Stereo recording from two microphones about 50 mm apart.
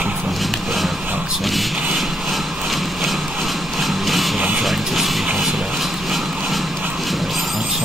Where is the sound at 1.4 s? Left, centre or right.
Centre.